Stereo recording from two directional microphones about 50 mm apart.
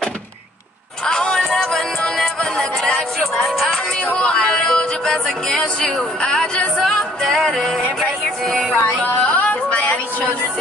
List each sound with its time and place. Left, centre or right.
1.0 s music: centre
3.2 s music: centre
4.2 s music: centre
6.8 s music: centre
7.5 s a sound: centre
9.0 s music: left